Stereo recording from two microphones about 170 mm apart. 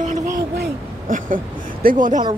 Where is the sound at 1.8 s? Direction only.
50° right (ahead or behind).